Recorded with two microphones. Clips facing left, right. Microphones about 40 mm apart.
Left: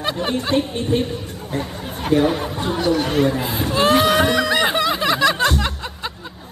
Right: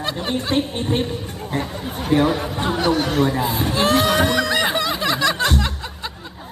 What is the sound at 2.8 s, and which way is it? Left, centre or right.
Speech, right.